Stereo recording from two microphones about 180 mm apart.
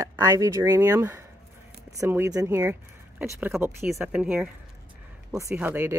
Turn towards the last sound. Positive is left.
turn(degrees=-10)  # may be behind; listen again after turning